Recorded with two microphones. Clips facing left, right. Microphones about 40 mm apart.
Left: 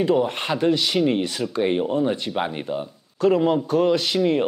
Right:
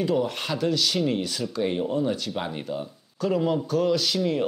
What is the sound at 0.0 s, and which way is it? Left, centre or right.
Speech, left.